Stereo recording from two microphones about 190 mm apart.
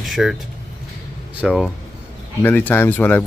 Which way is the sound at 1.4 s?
5° right (ahead or behind).